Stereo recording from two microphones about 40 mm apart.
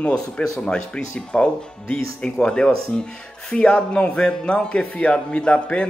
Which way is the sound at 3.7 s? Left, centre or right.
Left.